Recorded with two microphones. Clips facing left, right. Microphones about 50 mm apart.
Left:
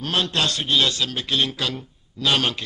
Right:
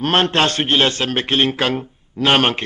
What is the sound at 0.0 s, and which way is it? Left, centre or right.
A man's voice, right.